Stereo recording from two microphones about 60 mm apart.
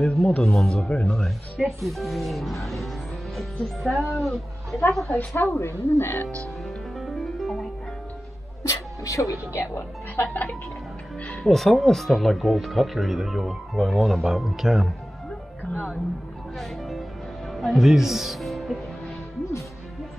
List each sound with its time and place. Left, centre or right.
0.0 s speech: centre
1.6 s speech: centre
5.3 s speech: left
7.0 s music: centre
8.6 s speech: left
9.5 s speech: left
11.2 s speech: centre
16.5 s a man's voice: centre